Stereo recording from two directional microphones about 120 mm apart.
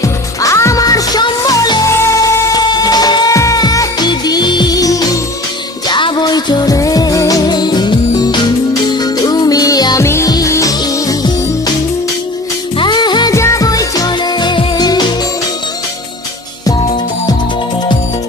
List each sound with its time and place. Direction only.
0.0 s music: 25° left (ahead or behind)
12.7 s music: 40° left (ahead or behind)
13.3 s music: 25° left (ahead or behind)